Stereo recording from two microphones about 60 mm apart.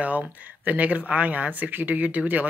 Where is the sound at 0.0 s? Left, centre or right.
Right.